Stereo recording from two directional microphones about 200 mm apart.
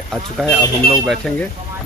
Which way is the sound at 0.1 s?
Centre (ahead or behind).